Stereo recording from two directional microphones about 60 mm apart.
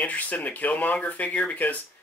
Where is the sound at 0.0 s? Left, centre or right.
Left.